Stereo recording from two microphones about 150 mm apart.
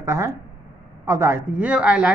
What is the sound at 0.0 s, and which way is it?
Speech, 20° right (ahead or behind).